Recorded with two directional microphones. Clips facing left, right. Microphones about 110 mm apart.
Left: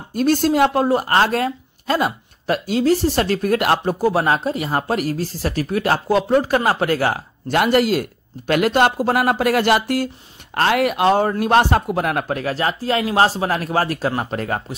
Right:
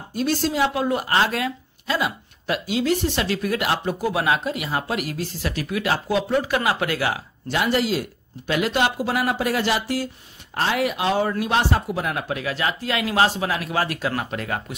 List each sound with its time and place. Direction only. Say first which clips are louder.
0.1 s speech: left 6 dB; 50° left (ahead or behind)